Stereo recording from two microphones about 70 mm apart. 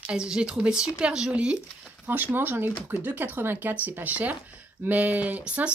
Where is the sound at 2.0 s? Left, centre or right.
Right.